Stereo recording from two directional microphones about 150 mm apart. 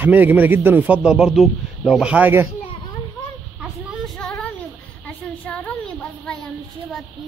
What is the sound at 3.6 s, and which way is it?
Child singing, centre (ahead or behind).